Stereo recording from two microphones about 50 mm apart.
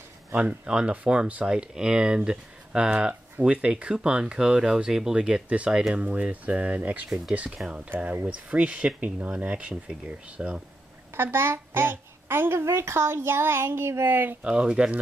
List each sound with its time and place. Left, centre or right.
0.4 s speech: centre
11.1 s a child's voice: right
14.4 s speech: centre